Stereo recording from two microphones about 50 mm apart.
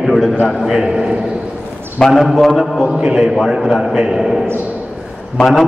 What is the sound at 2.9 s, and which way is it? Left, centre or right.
A man's voice, right.